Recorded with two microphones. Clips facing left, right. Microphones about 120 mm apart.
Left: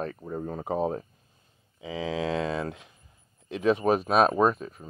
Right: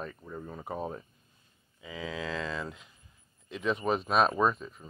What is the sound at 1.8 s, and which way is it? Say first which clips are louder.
Speech: left 7 dB; 75° left (ahead or behind).